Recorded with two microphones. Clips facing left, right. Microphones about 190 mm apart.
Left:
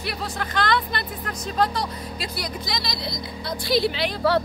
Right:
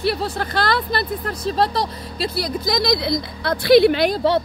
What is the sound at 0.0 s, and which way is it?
Speech, 30° right (ahead or behind).